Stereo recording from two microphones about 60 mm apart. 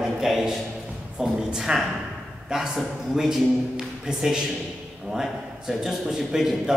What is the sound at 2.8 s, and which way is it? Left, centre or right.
A man's voice, centre.